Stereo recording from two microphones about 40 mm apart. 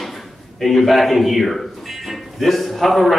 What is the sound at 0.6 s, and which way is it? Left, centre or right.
A man's voice, centre.